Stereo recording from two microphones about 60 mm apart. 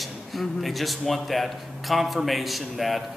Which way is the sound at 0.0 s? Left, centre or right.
Centre.